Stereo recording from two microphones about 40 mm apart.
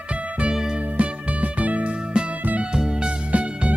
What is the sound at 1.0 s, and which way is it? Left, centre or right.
Music, right.